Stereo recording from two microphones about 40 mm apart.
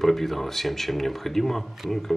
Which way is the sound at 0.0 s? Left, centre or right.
Centre.